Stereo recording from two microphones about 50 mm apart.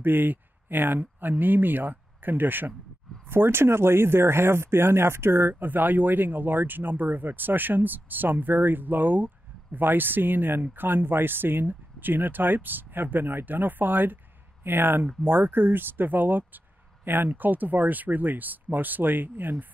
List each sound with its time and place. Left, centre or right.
0.0 s speech: right